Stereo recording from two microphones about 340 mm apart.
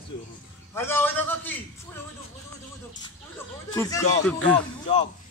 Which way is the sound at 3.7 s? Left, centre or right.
Centre.